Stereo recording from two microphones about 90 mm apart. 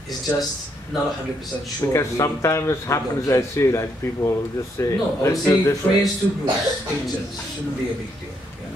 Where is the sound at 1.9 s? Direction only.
35° left (ahead or behind).